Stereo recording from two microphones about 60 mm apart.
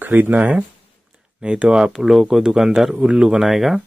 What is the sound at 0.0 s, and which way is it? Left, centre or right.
Speech, right.